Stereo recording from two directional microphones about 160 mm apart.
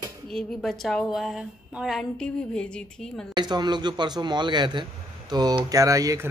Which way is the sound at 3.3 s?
25° right (ahead or behind).